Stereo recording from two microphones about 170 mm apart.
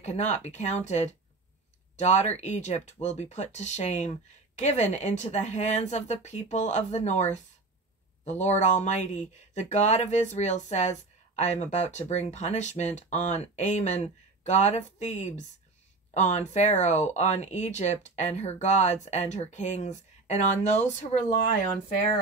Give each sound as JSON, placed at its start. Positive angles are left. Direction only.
{"t": 0.0, "sound": "speech", "side_deg": 40}